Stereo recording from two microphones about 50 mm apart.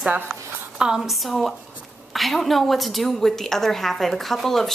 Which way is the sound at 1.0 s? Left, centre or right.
Centre.